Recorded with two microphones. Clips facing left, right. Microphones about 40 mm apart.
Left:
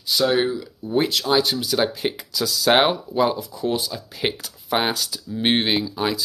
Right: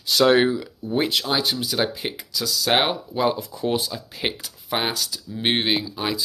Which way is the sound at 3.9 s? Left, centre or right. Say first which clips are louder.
Left 2 dB; centre.